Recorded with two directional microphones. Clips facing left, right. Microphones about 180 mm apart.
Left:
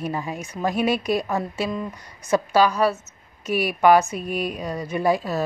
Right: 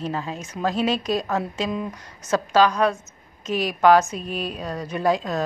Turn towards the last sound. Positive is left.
turn(degrees=10)  # may be behind; listen again after turning